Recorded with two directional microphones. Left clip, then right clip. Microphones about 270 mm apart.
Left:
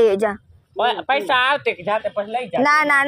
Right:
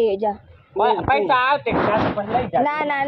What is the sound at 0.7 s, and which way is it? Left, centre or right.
Speech, left.